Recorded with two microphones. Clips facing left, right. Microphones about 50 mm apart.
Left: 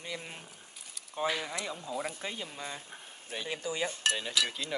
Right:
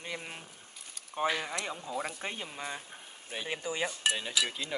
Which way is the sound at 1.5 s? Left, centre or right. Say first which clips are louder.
Right 1 dB; right.